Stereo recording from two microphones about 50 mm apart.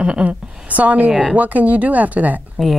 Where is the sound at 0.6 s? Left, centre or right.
Right.